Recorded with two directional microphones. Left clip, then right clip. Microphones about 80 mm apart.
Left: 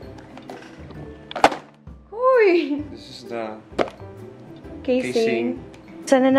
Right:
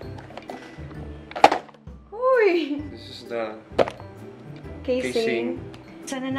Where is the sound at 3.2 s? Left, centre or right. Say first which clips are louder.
Right 1 dB; centre.